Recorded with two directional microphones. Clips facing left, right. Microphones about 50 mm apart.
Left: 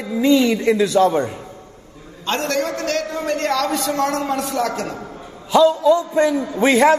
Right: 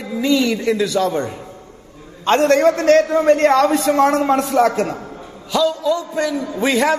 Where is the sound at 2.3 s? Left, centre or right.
Right.